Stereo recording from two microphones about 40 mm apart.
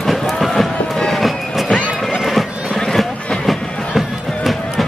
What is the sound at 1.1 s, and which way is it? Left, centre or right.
Music, centre.